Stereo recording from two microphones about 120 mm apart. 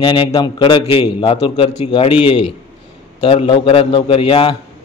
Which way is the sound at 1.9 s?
50° left (ahead or behind).